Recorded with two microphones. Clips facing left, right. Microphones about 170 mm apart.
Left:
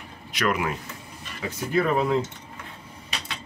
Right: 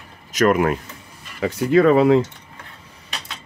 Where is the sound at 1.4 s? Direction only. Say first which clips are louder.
Right 9 dB; 90° right.